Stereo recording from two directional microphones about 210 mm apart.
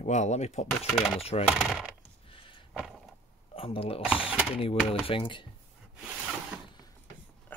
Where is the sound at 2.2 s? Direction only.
25° left (ahead or behind).